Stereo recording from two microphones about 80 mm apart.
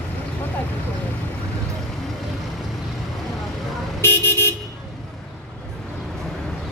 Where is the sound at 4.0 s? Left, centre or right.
Left.